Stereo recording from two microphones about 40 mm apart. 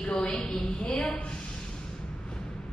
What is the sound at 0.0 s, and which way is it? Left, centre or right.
A woman's voice, centre.